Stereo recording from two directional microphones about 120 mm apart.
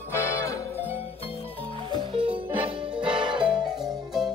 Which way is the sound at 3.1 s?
40° right (ahead or behind).